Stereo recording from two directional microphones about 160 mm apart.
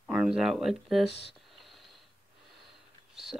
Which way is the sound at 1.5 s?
Centre (ahead or behind).